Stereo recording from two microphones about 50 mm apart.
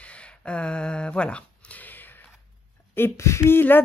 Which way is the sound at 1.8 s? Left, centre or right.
Left.